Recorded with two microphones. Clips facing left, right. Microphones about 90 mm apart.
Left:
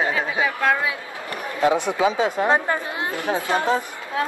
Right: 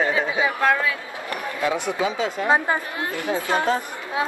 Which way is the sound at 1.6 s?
25° left (ahead or behind).